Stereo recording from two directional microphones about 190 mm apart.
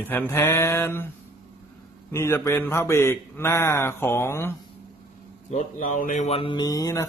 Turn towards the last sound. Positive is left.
turn(degrees=20)  # may be behind; listen again after turning